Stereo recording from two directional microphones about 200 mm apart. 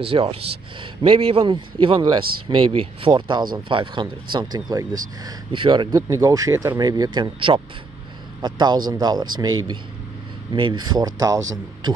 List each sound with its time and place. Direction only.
0.0 s speech: 25° right (ahead or behind)
10.5 s speech: 25° right (ahead or behind)